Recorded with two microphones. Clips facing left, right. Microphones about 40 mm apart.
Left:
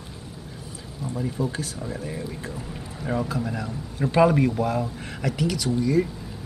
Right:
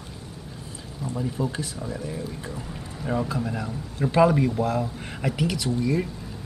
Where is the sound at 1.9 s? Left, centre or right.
Left.